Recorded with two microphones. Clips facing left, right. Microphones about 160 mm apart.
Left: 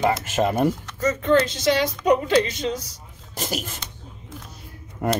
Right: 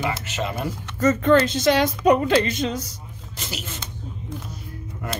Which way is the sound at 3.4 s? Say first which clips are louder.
Left 6 dB; 50° left (ahead or behind).